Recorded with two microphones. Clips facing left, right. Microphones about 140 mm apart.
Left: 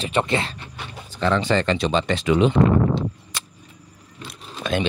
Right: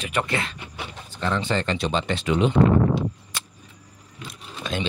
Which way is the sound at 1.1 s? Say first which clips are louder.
Left 5 dB; 90° left.